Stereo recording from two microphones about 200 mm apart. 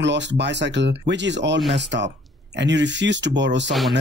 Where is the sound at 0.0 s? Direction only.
60° right (ahead or behind).